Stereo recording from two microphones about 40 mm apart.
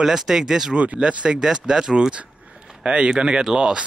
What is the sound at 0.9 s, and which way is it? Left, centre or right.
Speech, right.